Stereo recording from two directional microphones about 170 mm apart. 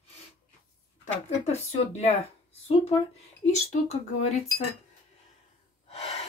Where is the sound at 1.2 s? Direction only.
40° left (ahead or behind).